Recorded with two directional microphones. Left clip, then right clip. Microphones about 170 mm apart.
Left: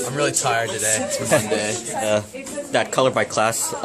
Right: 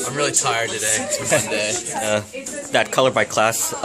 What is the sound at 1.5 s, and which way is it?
Speech, 35° left (ahead or behind).